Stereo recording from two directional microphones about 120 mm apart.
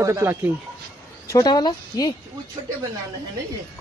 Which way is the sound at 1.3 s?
35° left (ahead or behind).